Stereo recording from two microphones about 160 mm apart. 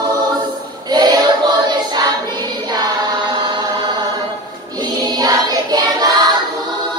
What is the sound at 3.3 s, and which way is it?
Chant, 25° right (ahead or behind).